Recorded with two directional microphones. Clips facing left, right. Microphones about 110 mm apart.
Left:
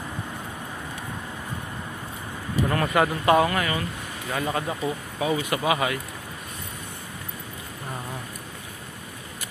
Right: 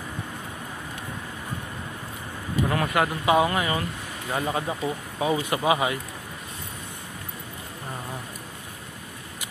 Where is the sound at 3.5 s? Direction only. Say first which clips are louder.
Even; 20° right (ahead or behind).